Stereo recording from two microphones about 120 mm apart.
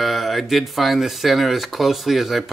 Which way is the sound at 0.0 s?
Centre (ahead or behind).